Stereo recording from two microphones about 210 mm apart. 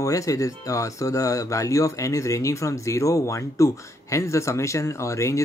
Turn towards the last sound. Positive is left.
turn(degrees=15)  # may be behind; listen again after turning